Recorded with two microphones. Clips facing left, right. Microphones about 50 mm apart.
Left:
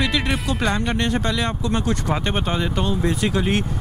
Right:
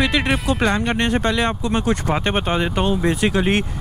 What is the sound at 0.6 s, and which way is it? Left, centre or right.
Speech, centre.